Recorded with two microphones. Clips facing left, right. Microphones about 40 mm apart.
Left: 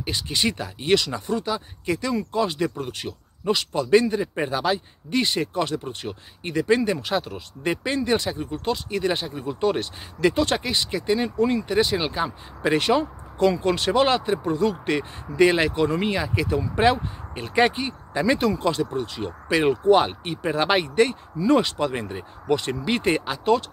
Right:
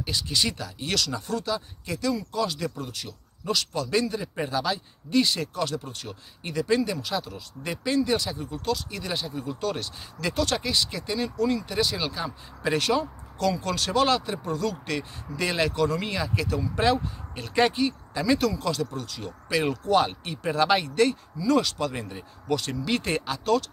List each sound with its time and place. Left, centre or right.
0.0 s speech: left